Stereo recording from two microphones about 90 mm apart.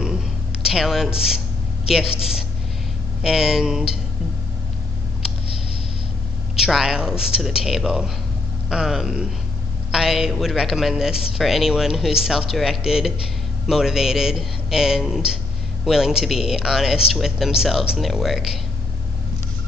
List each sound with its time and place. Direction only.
0.6 s speech: 5° right (ahead or behind)
3.2 s speech: 5° right (ahead or behind)
6.5 s speech: 5° right (ahead or behind)